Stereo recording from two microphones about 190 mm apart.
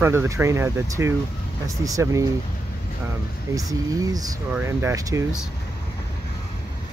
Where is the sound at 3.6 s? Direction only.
20° right (ahead or behind).